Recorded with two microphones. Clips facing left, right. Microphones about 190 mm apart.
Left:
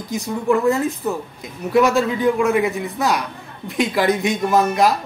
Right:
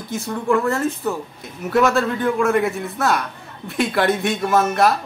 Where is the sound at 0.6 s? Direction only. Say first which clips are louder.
Left 2 dB; 15° left (ahead or behind).